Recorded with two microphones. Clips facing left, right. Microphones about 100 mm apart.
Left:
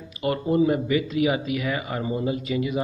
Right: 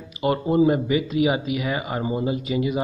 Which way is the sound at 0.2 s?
20° right (ahead or behind).